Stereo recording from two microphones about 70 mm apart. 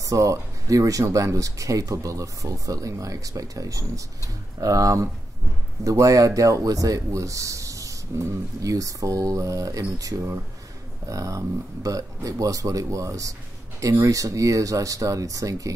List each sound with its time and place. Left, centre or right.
0.0 s speech: right